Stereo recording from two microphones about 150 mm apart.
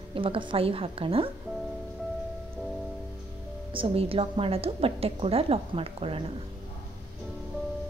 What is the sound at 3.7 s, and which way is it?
A woman's voice, 35° right (ahead or behind).